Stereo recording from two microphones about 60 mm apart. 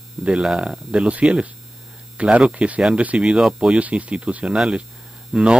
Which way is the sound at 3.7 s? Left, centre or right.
Right.